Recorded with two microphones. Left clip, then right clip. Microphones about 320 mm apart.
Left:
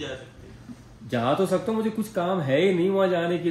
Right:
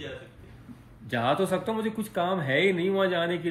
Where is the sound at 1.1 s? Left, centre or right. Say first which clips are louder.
Left 2 dB; centre.